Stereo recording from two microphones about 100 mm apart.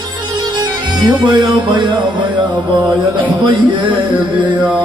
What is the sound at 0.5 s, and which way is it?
Music, 50° right (ahead or behind).